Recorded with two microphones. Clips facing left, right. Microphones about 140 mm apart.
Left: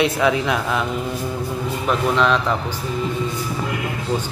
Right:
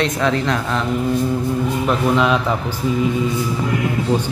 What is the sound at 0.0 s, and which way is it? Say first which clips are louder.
Speech: even; 10° left (ahead or behind).